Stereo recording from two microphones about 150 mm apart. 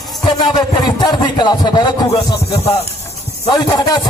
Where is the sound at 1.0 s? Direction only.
30° left (ahead or behind).